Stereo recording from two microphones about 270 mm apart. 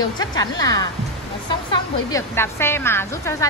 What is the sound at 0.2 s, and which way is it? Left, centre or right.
Speech, centre.